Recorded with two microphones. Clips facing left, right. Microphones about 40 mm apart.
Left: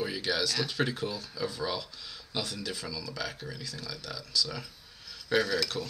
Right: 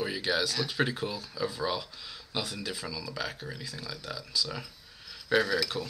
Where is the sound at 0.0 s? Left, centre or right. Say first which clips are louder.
Right 1 dB; centre.